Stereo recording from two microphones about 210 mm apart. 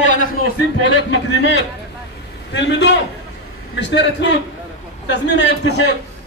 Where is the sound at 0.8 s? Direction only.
60° left (ahead or behind).